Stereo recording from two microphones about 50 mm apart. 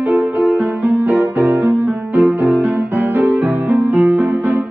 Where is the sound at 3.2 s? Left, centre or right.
Right.